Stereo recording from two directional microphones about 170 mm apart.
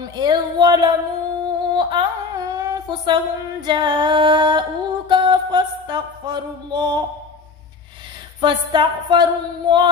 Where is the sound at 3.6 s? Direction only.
25° right (ahead or behind).